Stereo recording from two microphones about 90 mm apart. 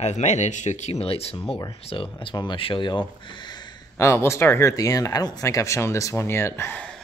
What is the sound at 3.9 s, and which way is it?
Speech, 30° left (ahead or behind).